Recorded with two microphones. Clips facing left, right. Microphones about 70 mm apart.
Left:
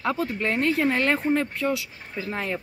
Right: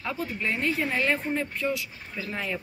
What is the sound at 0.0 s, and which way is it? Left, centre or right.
Speech, left.